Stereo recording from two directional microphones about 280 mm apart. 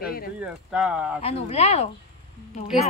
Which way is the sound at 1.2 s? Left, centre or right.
Left.